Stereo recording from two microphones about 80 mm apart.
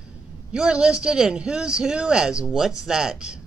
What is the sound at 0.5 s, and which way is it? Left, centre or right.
A woman's voice, centre.